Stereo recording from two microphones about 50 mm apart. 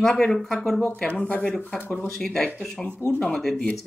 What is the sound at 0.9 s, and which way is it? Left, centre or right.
Speech, left.